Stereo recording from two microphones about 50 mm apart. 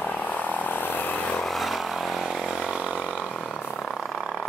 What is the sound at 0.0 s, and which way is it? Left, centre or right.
Frog, left.